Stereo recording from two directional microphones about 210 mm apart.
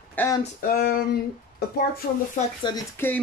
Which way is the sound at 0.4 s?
45° left (ahead or behind).